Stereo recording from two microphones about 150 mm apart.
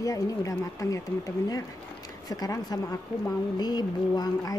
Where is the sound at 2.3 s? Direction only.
25° left (ahead or behind).